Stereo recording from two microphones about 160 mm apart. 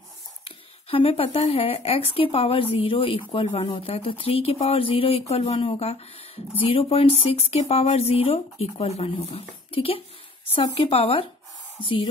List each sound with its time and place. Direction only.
0.5 s speech: 35° left (ahead or behind)